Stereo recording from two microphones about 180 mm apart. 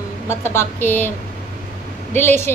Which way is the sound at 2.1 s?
10° left (ahead or behind).